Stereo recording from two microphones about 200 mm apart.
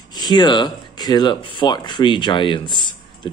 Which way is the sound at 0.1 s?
20° left (ahead or behind).